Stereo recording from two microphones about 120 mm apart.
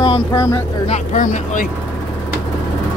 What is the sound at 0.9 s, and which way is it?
Speech, 80° left.